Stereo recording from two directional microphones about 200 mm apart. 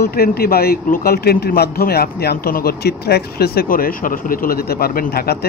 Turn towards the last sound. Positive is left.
turn(degrees=50)  # may be behind; listen again after turning